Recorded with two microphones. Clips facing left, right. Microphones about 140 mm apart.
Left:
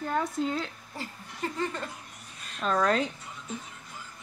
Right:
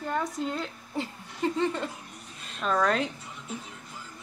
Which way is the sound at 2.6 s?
Centre (ahead or behind).